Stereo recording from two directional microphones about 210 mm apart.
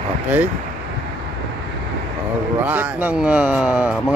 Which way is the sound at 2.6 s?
10° right (ahead or behind).